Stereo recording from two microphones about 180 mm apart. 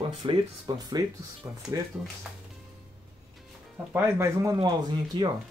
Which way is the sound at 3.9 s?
15° right (ahead or behind).